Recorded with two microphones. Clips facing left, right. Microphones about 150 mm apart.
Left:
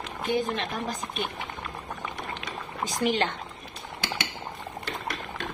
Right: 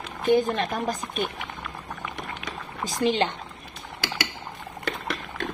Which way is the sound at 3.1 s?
20° right (ahead or behind).